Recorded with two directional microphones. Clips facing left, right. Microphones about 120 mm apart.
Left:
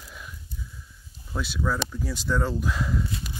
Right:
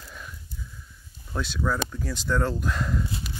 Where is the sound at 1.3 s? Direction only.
5° left (ahead or behind).